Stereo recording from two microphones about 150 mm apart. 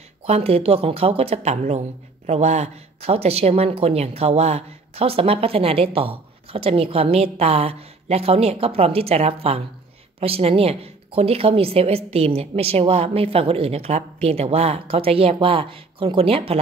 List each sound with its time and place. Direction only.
0.2 s a woman's voice: 40° right (ahead or behind)